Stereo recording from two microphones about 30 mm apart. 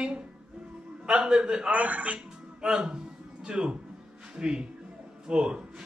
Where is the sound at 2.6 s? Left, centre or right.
Right.